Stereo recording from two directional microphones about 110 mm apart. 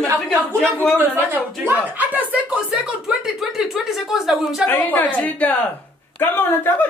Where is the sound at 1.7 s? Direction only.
15° right (ahead or behind).